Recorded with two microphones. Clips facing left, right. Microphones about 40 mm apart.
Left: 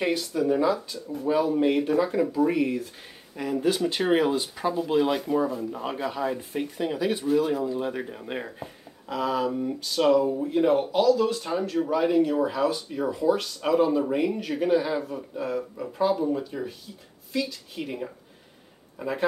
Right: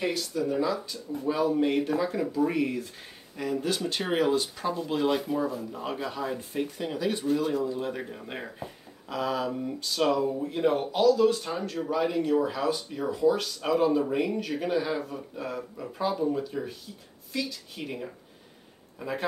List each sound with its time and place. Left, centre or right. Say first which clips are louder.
0.0 s speech: left 4 dB; centre